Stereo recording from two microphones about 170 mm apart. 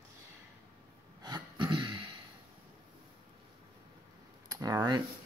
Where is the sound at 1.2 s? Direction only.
25° right (ahead or behind).